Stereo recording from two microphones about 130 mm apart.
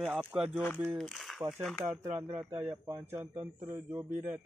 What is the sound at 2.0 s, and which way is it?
A man's voice, 15° right (ahead or behind).